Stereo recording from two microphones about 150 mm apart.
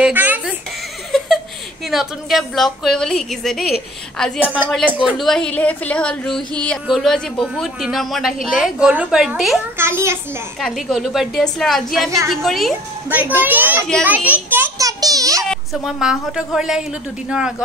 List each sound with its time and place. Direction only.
0.0 s a sound: 10° right (ahead or behind)
1.9 s speech: centre (ahead or behind)
9.8 s a child's voice: 15° right (ahead or behind)
10.6 s speech: centre (ahead or behind)
13.1 s a child's voice: 15° right (ahead or behind)
15.4 s speech: centre (ahead or behind)